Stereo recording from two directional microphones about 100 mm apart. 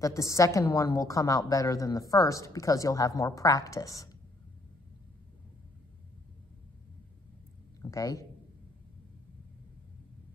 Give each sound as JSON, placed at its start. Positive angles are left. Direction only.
{"t": 0.0, "sound": "a woman's voice", "side_deg": 30}
{"t": 7.8, "sound": "a woman's voice", "side_deg": 35}